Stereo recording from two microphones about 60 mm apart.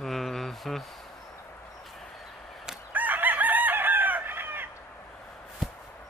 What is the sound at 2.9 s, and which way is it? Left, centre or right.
Chicken, right.